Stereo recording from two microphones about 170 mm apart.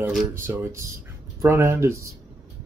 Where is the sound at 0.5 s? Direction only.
15° right (ahead or behind).